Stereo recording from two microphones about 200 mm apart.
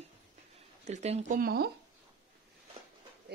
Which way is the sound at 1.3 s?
50° right (ahead or behind).